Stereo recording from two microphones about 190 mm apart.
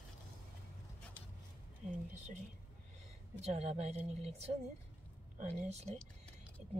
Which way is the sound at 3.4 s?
35° right (ahead or behind).